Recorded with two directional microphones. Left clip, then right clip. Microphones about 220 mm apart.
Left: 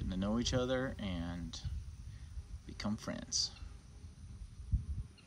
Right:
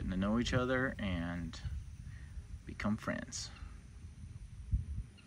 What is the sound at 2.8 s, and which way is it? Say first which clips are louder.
Speech: right 4 dB; 15° left (ahead or behind).